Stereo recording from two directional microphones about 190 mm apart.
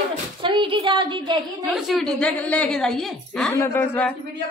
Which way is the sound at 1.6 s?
Centre (ahead or behind).